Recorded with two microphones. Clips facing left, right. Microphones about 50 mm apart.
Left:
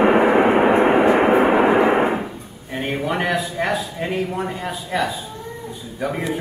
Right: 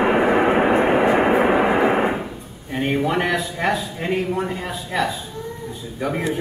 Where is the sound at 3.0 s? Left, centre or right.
Centre.